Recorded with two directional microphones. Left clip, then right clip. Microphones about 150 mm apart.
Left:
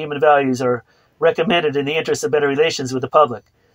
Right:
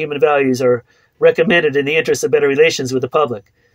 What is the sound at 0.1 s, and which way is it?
Speech, centre (ahead or behind).